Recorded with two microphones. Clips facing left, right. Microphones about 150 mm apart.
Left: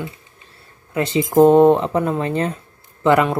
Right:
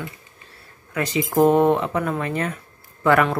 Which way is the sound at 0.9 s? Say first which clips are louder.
Left 5 dB; 25° left (ahead or behind).